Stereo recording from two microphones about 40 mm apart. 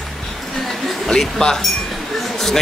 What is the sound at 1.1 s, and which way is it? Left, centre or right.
Speech, centre.